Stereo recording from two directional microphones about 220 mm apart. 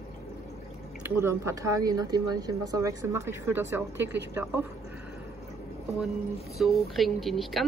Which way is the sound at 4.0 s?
55° right (ahead or behind).